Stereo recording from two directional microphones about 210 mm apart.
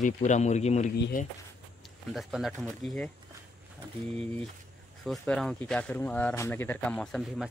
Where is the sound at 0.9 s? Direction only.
45° left (ahead or behind).